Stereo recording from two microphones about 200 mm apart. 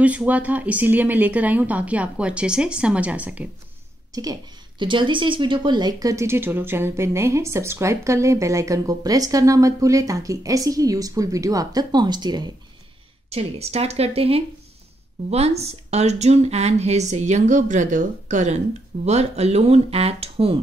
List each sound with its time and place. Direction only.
0.0 s a woman's voice: 5° right (ahead or behind)
4.1 s a woman's voice: 20° right (ahead or behind)
13.3 s speech: 30° right (ahead or behind)